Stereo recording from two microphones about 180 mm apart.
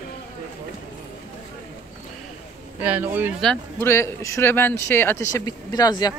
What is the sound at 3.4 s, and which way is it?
A man's voice, 10° left (ahead or behind).